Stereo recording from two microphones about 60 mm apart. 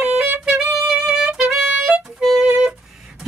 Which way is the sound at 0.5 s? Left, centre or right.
Centre.